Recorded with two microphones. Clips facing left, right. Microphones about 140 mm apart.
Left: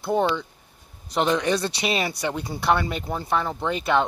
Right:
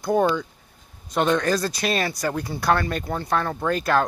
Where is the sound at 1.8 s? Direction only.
10° left (ahead or behind).